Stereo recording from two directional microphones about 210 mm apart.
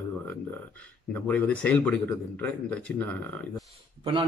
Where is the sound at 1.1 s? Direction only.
5° left (ahead or behind).